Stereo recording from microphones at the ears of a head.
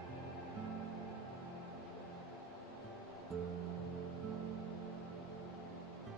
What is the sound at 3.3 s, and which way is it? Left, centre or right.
Music, right.